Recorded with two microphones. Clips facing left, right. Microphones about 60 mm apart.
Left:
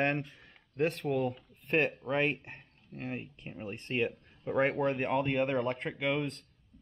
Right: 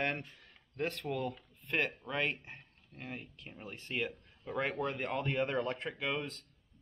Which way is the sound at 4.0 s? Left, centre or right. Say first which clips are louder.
Left 5 dB; centre.